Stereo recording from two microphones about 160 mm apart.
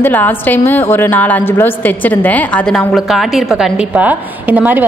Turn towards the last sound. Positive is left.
turn(degrees=-10)  # may be behind; listen again after turning